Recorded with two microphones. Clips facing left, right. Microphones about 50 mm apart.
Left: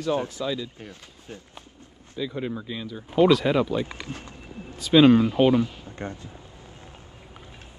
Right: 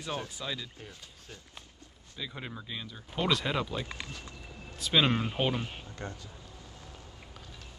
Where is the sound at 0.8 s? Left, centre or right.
Left.